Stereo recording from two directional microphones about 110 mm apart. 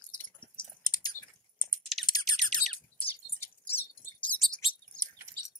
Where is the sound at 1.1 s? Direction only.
25° left (ahead or behind).